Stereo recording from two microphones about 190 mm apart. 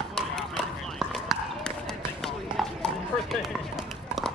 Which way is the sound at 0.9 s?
Centre (ahead or behind).